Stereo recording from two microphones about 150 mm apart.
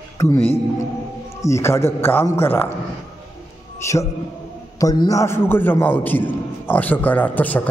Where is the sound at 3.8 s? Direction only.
20° left (ahead or behind).